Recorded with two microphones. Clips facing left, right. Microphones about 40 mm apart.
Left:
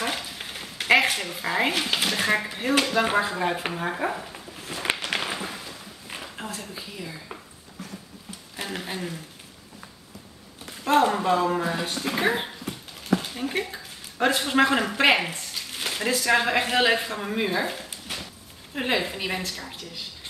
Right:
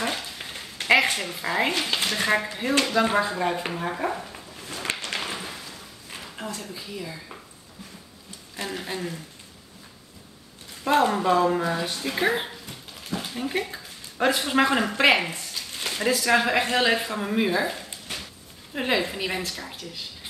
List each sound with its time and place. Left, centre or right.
0.0 s speech: centre
4.6 s a sound: centre
8.8 s a woman's voice: centre
10.8 s a woman's voice: centre
11.7 s speech: left
12.2 s a woman's voice: centre
15.5 s a sound: centre
16.6 s a man's voice: centre
17.0 s a woman's voice: centre